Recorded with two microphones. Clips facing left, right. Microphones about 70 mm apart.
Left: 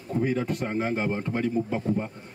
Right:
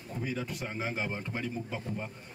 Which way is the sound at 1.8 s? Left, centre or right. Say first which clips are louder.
Left 10 dB; left.